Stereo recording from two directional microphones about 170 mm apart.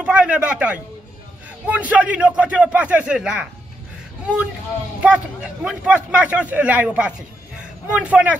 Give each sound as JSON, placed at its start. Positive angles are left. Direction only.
{"t": 0.0, "sound": "a man's voice", "side_deg": -5}
{"t": 5.0, "sound": "a man's voice", "side_deg": -5}